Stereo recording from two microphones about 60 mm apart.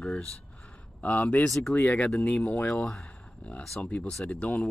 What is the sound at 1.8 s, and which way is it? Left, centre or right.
Speech, left.